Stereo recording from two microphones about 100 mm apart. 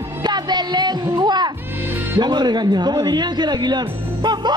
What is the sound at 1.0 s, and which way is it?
A man's voice, 45° right (ahead or behind).